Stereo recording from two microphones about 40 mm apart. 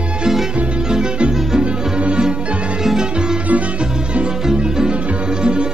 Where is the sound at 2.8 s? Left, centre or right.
Centre.